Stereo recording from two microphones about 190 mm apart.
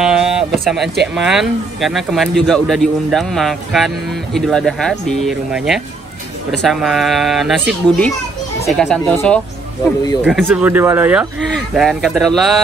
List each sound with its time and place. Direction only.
0.0 s a sound: 5° right (ahead or behind)
1.1 s a man's voice: centre (ahead or behind)
10.4 s a man's voice: 10° right (ahead or behind)